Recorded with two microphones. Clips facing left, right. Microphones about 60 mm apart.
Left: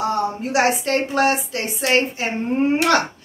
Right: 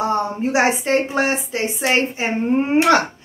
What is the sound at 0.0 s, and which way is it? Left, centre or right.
A woman's voice, right.